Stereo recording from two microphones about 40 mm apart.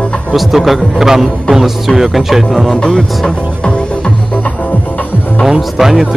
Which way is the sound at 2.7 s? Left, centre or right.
Centre.